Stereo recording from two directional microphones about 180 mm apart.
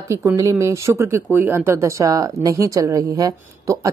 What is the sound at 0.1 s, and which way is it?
Speech, 15° right (ahead or behind).